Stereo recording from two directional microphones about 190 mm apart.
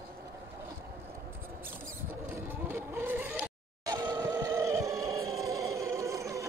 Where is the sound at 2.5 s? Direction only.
10° right (ahead or behind).